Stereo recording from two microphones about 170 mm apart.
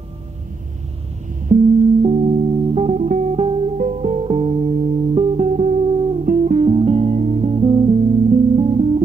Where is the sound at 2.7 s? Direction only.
40° right (ahead or behind).